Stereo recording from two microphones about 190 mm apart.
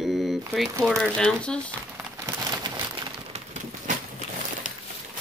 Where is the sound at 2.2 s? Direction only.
20° right (ahead or behind).